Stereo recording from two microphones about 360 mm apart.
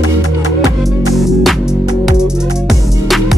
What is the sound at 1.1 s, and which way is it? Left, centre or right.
Music, centre.